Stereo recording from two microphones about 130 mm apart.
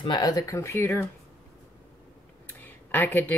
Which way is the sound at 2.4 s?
15° left (ahead or behind).